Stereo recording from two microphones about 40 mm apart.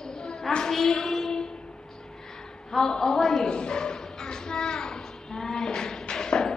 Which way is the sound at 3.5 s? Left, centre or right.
Left.